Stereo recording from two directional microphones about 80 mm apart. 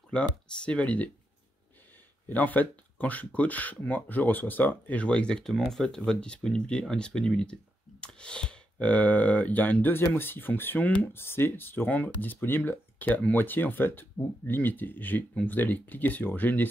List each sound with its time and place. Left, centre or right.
0.1 s speech: centre
2.2 s speech: left